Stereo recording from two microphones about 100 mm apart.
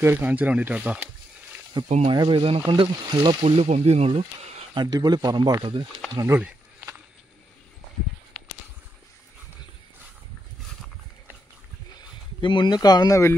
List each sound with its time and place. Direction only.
0.0 s speech: 20° right (ahead or behind)
1.8 s speech: 45° right (ahead or behind)
2.1 s speech: 55° right (ahead or behind)
2.6 s speech: 50° right (ahead or behind); by 4.2 s 90° right
4.7 s speech: 45° right (ahead or behind)
6.1 s speech: 30° right (ahead or behind)
12.4 s speech: 50° left (ahead or behind); by 13.4 s 30° left (ahead or behind)